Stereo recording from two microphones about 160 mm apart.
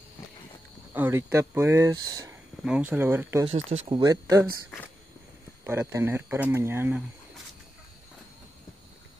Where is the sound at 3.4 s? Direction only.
30° right (ahead or behind).